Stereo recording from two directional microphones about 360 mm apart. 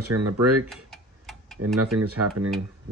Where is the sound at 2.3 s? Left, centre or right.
Centre.